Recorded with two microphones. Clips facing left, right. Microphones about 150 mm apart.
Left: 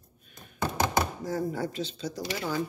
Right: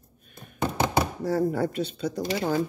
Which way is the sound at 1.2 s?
60° right (ahead or behind).